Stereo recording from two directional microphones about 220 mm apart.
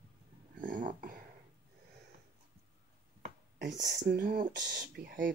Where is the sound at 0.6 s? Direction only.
35° right (ahead or behind).